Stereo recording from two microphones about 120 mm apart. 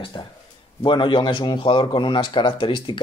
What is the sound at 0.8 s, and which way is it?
Speech, 40° left (ahead or behind).